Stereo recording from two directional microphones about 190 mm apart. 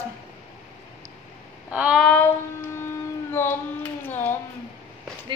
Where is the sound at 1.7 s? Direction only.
5° right (ahead or behind).